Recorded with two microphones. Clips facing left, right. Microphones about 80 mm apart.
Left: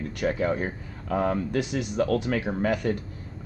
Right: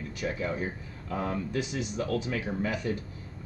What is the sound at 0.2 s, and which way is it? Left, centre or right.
Speech, left.